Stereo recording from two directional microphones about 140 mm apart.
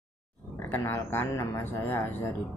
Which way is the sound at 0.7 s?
15° left (ahead or behind).